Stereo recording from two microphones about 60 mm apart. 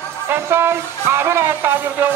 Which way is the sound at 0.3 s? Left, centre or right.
Right.